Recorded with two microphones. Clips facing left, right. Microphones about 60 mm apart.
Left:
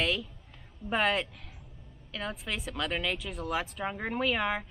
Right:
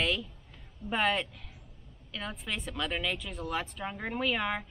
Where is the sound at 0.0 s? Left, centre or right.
Centre.